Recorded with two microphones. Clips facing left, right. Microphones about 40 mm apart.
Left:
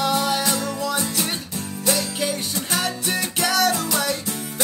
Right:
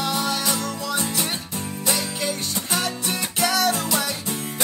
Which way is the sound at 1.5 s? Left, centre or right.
Centre.